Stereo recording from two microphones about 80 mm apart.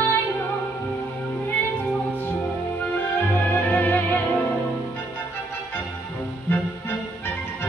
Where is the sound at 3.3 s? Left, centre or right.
Left.